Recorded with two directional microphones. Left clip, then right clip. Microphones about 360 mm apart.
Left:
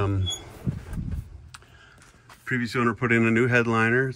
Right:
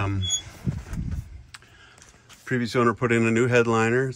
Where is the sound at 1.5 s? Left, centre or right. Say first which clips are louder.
Right 1 dB; centre.